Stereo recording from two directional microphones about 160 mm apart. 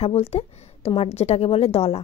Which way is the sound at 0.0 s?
40° left (ahead or behind).